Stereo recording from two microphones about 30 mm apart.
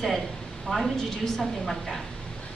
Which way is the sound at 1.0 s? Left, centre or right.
Centre.